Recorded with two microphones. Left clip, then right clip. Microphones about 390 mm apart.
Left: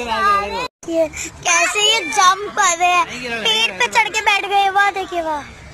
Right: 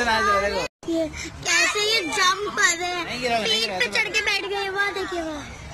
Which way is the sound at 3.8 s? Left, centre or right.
Centre.